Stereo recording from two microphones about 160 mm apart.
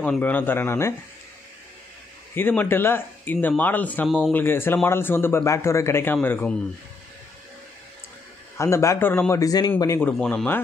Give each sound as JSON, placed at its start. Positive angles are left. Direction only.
{"t": 0.0, "sound": "speech", "side_deg": 10}
{"t": 2.3, "sound": "speech", "side_deg": 10}
{"t": 8.5, "sound": "speech", "side_deg": 15}